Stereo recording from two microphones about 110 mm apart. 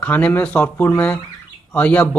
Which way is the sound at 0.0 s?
15° left (ahead or behind).